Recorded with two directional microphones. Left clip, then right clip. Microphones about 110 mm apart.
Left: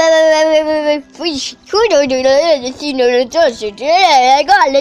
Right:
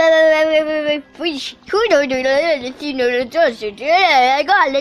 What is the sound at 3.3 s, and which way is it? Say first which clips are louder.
Speech: left 2 dB; 20° left (ahead or behind).